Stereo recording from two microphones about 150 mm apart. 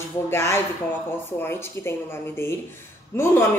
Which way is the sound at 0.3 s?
15° left (ahead or behind).